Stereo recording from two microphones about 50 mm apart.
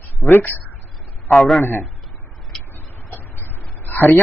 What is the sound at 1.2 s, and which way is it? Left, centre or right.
Speech, centre.